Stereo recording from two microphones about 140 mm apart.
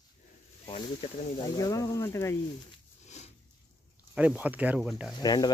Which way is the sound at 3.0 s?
55° left (ahead or behind).